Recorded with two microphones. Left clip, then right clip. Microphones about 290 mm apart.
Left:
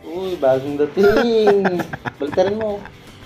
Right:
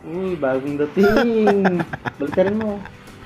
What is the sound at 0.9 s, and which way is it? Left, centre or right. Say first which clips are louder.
Speech: left 2 dB; centre.